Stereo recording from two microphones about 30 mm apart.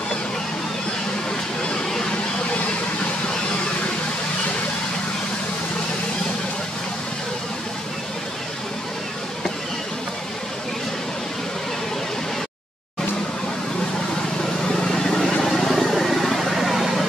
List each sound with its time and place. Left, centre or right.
14.4 s vehicle: centre